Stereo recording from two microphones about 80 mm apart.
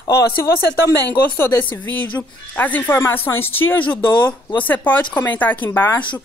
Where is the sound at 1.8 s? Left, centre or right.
Left.